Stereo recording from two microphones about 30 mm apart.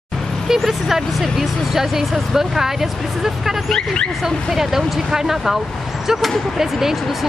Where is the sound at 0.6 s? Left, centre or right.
Centre.